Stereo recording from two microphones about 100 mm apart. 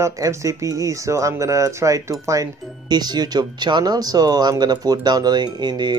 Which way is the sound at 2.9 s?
45° right (ahead or behind).